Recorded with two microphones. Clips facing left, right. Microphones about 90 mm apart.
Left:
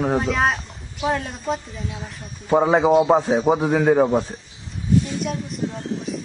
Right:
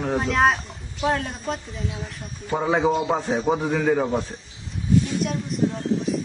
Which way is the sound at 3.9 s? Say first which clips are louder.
Left 7 dB; 30° left (ahead or behind).